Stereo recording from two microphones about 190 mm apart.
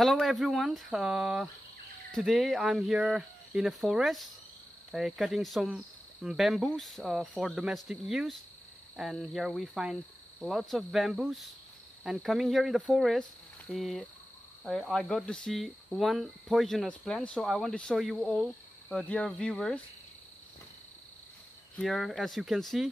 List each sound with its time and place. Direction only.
0.0 s speech: centre (ahead or behind)
21.7 s speech: centre (ahead or behind)